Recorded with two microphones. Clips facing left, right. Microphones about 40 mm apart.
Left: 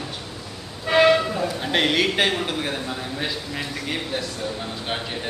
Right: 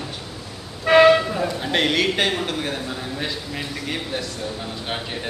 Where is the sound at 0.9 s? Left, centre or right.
Right.